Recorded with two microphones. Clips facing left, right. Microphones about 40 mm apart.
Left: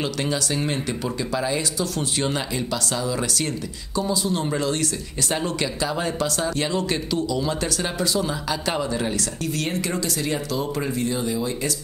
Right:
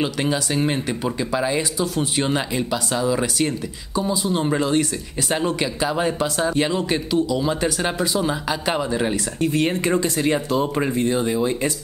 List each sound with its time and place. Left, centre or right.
0.0 s speech: centre